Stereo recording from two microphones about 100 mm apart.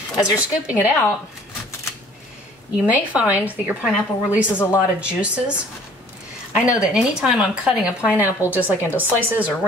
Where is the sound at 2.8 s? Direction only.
15° right (ahead or behind).